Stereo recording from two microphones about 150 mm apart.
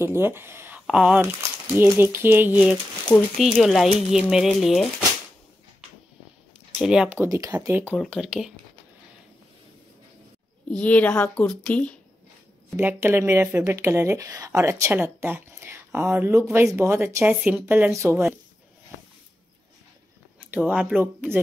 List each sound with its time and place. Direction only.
0.0 s speech: 15° right (ahead or behind)
3.1 s speech: 5° left (ahead or behind)
6.8 s speech: 5° right (ahead or behind)
7.2 s speech: 20° right (ahead or behind); by 8.5 s 5° right (ahead or behind)
10.7 s speech: 10° left (ahead or behind)
12.7 s speech: 15° right (ahead or behind)
20.5 s speech: 10° right (ahead or behind)